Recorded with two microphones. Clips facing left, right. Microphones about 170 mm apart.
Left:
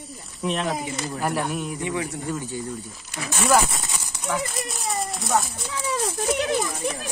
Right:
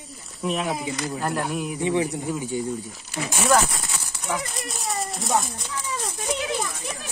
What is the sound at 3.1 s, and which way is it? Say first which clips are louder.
Speech: right 2 dB; 15° right (ahead or behind).